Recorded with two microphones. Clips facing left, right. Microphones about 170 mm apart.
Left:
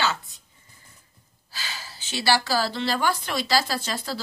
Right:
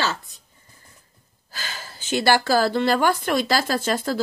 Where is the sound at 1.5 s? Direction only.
50° right (ahead or behind).